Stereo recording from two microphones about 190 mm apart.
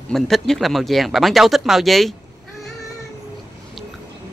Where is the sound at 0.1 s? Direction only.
Centre (ahead or behind).